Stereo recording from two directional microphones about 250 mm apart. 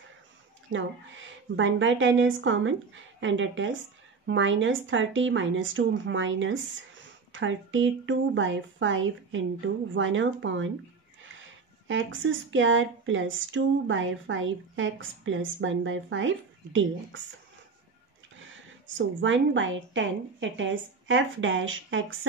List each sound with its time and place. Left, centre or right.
0.7 s speech: right
11.9 s speech: right
18.9 s speech: right